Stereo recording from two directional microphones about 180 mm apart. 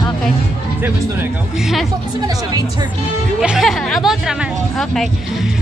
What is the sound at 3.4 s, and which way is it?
A woman's voice, centre (ahead or behind).